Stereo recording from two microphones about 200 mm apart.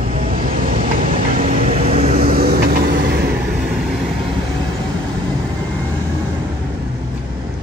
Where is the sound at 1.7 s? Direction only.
30° right (ahead or behind).